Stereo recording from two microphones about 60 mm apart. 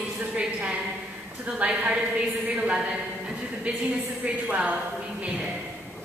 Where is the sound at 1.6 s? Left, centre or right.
Right.